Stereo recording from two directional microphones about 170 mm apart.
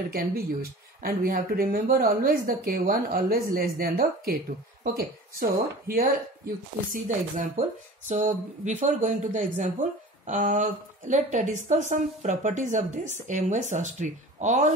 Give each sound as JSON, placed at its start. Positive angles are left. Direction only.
{"t": 0.1, "sound": "speech", "side_deg": -60}